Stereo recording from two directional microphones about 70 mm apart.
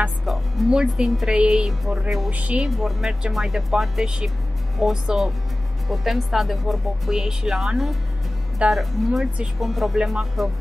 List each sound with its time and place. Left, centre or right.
0.2 s speech: centre
0.7 s music: centre
2.3 s a woman's voice: right
2.7 s speech: centre
3.1 s music: centre
4.7 s speech: centre